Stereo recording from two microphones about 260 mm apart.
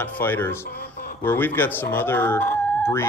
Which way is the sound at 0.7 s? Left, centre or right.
Left.